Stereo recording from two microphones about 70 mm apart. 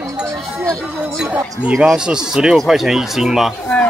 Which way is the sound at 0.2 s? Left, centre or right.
Right.